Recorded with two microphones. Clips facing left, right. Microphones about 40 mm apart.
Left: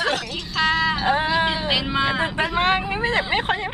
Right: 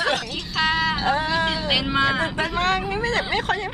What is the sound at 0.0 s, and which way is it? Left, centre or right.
Music, centre.